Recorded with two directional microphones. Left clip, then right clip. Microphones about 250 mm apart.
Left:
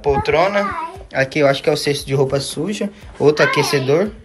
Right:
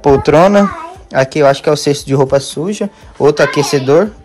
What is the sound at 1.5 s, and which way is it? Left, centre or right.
Speech, centre.